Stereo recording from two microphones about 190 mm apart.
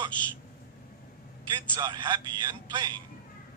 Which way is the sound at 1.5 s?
25° right (ahead or behind).